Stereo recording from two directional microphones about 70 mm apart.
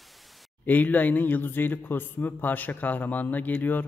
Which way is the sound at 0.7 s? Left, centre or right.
Left.